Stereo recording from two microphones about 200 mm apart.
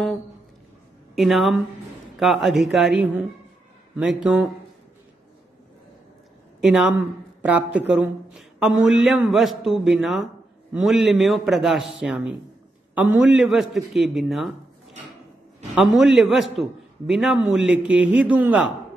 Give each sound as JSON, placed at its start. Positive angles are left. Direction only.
{"t": 1.1, "sound": "a man's voice", "side_deg": 0}
{"t": 6.6, "sound": "a man's voice", "side_deg": -5}
{"t": 15.7, "sound": "a man's voice", "side_deg": 0}